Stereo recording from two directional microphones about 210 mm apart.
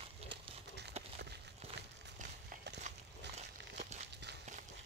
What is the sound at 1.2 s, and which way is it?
Walk, 55° right (ahead or behind).